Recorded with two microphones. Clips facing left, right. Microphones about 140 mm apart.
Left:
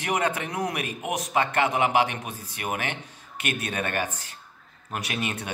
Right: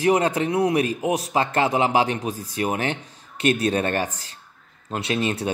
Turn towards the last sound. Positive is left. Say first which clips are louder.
# right 7 dB
turn(degrees=-30)  # may be behind; listen again after turning